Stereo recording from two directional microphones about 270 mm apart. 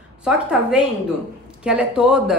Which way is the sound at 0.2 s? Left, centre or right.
Centre.